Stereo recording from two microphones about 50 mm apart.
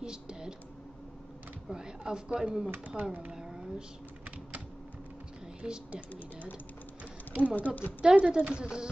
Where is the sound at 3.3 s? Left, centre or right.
Centre.